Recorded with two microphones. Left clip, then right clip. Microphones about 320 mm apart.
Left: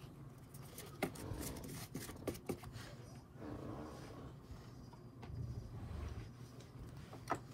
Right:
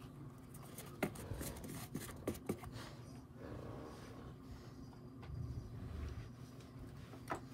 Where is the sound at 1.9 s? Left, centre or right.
Centre.